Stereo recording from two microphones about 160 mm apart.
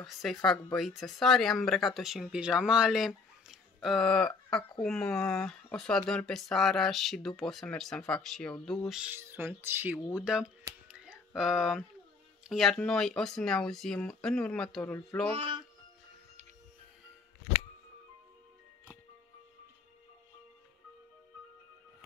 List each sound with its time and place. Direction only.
0.0 s speech: centre (ahead or behind)
10.9 s a sound: 5° right (ahead or behind)
12.4 s speech: centre (ahead or behind)
15.3 s speech: 30° right (ahead or behind)